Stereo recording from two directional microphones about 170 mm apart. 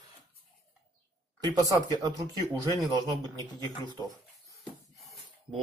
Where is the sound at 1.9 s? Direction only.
20° right (ahead or behind).